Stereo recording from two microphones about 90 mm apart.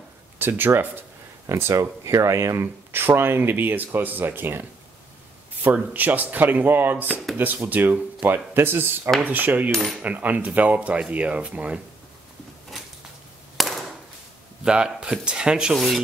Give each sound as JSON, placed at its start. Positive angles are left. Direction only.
{"t": 0.4, "sound": "speech", "side_deg": -25}
{"t": 9.7, "sound": "cutlery", "side_deg": 0}
{"t": 10.0, "sound": "speech", "side_deg": -15}
{"t": 13.6, "sound": "a sound", "side_deg": 0}
{"t": 14.6, "sound": "speech", "side_deg": -10}